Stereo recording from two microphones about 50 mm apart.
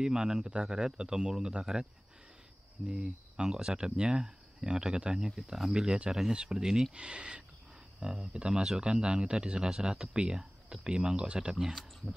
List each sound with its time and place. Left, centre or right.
0.0 s speech: centre
2.9 s speech: centre